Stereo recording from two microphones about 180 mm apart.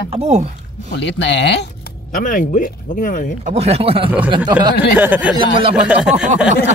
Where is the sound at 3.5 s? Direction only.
35° right (ahead or behind).